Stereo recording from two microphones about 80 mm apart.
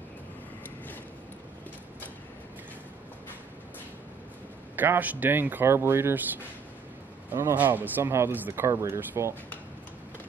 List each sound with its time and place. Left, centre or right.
4.7 s speech: right
7.2 s a man's voice: right
7.5 s speech: right